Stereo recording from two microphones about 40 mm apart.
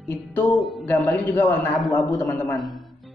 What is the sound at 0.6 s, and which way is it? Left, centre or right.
Speech, centre.